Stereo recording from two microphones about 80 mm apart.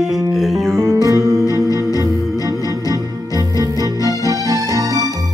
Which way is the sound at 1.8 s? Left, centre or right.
Left.